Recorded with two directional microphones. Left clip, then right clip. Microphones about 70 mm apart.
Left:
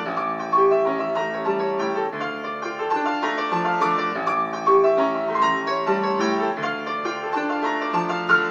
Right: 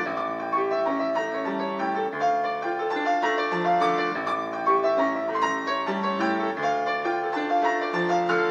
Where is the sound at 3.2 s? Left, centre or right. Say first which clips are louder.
Left 1 dB; centre.